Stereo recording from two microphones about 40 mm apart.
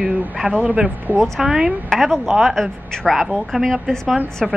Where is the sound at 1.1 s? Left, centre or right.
Right.